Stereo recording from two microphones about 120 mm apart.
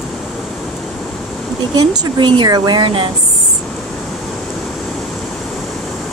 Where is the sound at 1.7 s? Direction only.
35° right (ahead or behind).